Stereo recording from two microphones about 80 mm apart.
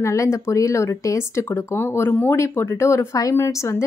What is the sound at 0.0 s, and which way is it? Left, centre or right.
A woman's voice, left.